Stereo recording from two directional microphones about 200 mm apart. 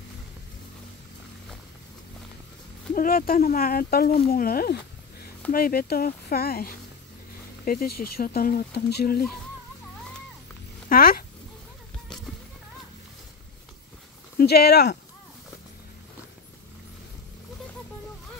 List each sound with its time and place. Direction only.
2.9 s speech: 45° left (ahead or behind)
10.9 s speech: 45° left (ahead or behind)
14.4 s speech: 50° left (ahead or behind)